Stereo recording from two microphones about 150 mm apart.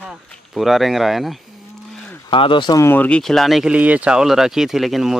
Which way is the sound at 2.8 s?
15° left (ahead or behind).